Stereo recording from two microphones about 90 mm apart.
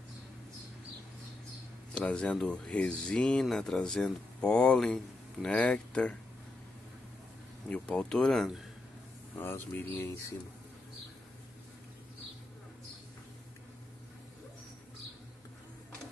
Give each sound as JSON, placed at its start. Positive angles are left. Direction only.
{"t": 2.0, "sound": "speech", "side_deg": 10}
{"t": 7.6, "sound": "speech", "side_deg": 15}
{"t": 9.3, "sound": "speech", "side_deg": 25}